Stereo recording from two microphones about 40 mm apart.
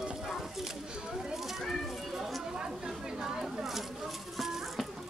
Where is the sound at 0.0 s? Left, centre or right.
Centre.